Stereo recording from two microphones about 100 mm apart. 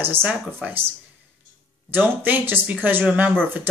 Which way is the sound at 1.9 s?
20° right (ahead or behind).